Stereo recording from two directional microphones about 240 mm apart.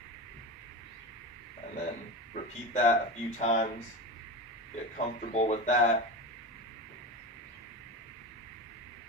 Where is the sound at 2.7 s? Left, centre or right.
Left.